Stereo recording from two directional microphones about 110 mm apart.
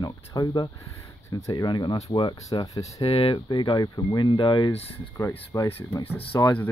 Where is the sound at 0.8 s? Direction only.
25° left (ahead or behind); by 2.4 s 45° left (ahead or behind).